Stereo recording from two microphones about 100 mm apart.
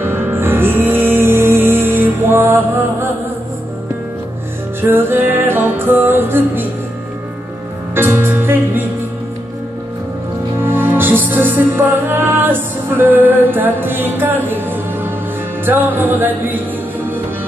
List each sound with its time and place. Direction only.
0.0 s music: 25° right (ahead or behind)
4.8 s music: 20° right (ahead or behind)
7.9 s music: 20° right (ahead or behind)
10.6 s music: 20° right (ahead or behind)